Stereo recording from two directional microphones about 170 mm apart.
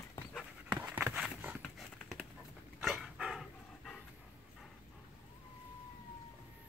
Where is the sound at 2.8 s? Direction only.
5° right (ahead or behind).